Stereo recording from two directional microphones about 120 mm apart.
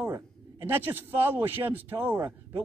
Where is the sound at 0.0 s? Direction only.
20° right (ahead or behind).